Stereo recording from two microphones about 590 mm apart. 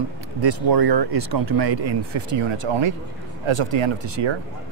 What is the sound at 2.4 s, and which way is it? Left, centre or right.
Speech, right.